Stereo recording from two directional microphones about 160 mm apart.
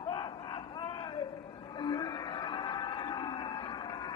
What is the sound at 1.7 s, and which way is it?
Whale vocalization, 25° left (ahead or behind).